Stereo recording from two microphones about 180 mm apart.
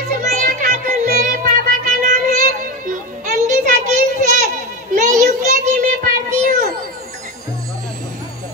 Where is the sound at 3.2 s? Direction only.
45° right (ahead or behind).